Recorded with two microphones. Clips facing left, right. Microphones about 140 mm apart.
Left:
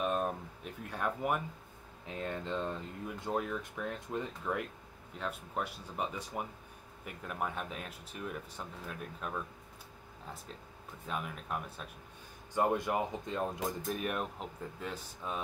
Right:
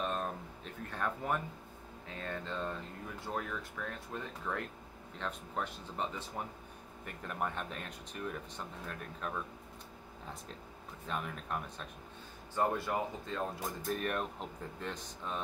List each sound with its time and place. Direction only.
0.0 s a sound: 10° left (ahead or behind)
2.1 s speech: 15° left (ahead or behind)
11.1 s speech: 5° left (ahead or behind)
12.5 s speech: 15° left (ahead or behind)
13.8 s speech: 5° left (ahead or behind)